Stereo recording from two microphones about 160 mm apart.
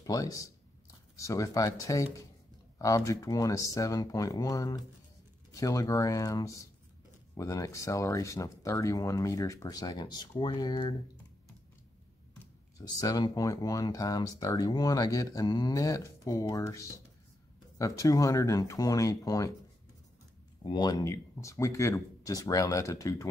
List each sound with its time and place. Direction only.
0.0 s speech: 20° left (ahead or behind)
12.7 s speech: 20° left (ahead or behind)
20.6 s speech: 25° left (ahead or behind)